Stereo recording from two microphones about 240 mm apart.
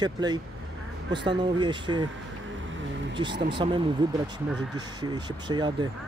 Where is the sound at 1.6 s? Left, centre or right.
Centre.